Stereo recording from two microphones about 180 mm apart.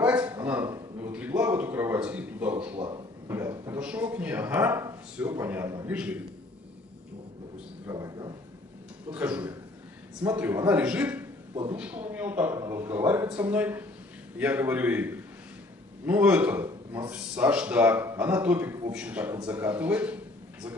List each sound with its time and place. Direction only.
0.0 s a sound: 5° right (ahead or behind)
3.3 s speech: 15° right (ahead or behind)
7.8 s speech: 20° right (ahead or behind)
9.1 s speech: 10° right (ahead or behind)